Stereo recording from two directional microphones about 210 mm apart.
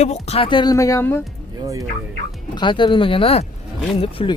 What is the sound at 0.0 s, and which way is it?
Speech, 30° left (ahead or behind).